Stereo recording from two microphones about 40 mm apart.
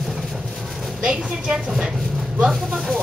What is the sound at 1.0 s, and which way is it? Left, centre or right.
Speech, right.